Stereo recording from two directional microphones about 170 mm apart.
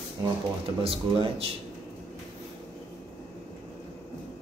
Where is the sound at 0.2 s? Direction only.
20° right (ahead or behind).